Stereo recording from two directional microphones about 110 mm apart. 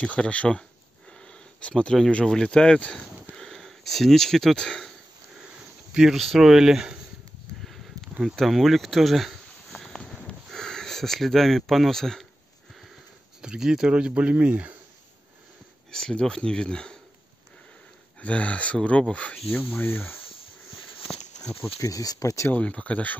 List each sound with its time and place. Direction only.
0.0 s speech: 10° left (ahead or behind)
7.6 s a sound: centre (ahead or behind)
8.2 s insect: centre (ahead or behind)
13.4 s speech: 5° right (ahead or behind)
15.9 s speech: 5° left (ahead or behind)
18.2 s speech: 10° left (ahead or behind)
21.4 s a sound: 90° left
21.7 s speech: 30° left (ahead or behind)
22.5 s speech: 10° left (ahead or behind)